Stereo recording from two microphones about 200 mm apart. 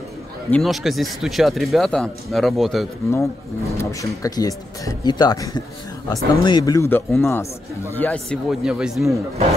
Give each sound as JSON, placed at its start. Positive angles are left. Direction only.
{"t": 0.5, "sound": "speech", "side_deg": 0}
{"t": 3.1, "sound": "a man's voice", "side_deg": 15}